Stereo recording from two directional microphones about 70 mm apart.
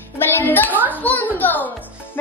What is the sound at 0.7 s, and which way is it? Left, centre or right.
Speech, right.